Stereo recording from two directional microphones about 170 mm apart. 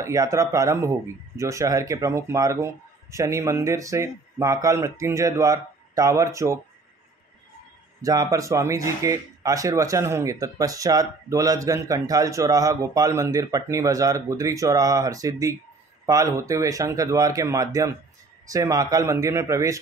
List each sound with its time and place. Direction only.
0.0 s speech: 20° right (ahead or behind)
8.0 s speech: 20° right (ahead or behind)